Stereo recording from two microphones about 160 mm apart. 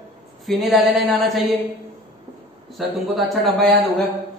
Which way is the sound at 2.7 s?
Centre (ahead or behind).